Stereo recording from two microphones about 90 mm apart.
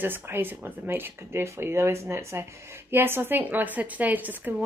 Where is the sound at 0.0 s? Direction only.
25° right (ahead or behind).